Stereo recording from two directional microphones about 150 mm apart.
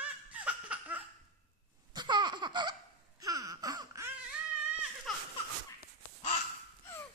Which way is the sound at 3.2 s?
25° right (ahead or behind).